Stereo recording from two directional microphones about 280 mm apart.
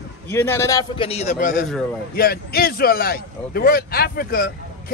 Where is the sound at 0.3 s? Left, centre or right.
Centre.